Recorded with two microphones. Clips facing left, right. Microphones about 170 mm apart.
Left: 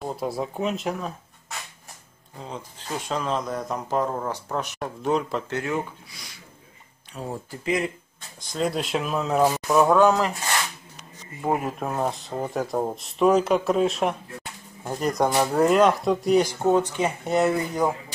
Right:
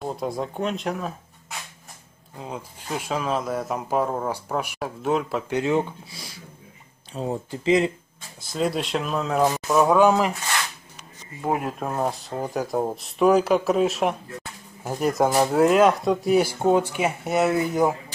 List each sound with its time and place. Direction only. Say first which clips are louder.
0.0 s speech: even; centre (ahead or behind)
2.3 s speech: right 2 dB; 10° right (ahead or behind)
5.5 s speech: right 9 dB; 20° right (ahead or behind)
8.4 s speech: right 1 dB; 5° right (ahead or behind)
9.9 s speech: right 1 dB; 15° right (ahead or behind)
11.4 s speech: even; centre (ahead or behind)